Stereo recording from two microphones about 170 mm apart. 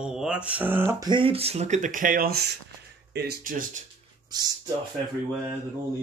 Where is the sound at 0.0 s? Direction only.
5° right (ahead or behind); by 3.8 s 55° right (ahead or behind).